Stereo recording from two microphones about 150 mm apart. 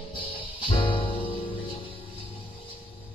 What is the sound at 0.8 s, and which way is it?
Music, 35° left (ahead or behind).